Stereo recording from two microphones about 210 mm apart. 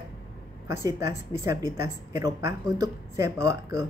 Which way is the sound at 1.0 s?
15° right (ahead or behind).